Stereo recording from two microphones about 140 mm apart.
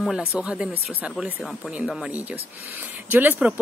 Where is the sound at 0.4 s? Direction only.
5° right (ahead or behind).